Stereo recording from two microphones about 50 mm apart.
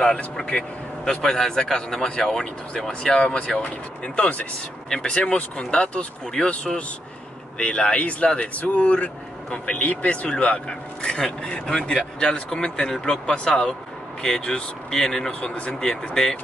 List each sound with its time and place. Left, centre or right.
0.4 s speech: centre
15.4 s speech: left